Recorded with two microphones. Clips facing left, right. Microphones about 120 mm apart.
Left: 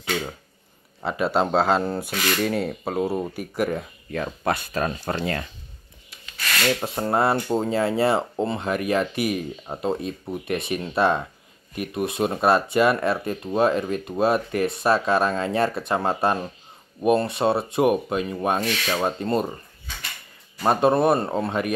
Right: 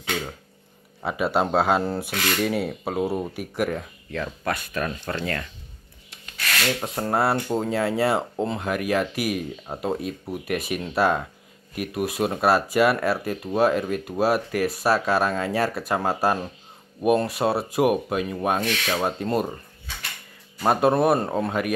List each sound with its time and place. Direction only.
1.0 s speech: 5° right (ahead or behind)
4.2 s speech: 25° left (ahead or behind)
6.7 s speech: 5° left (ahead or behind)
20.6 s speech: centre (ahead or behind)